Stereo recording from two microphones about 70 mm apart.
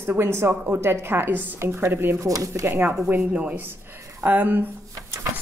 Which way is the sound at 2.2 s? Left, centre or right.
Right.